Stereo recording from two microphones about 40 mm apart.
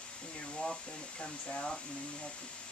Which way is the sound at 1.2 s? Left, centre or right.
Left.